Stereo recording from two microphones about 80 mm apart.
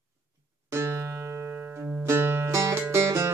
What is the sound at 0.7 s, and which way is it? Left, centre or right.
Music, right.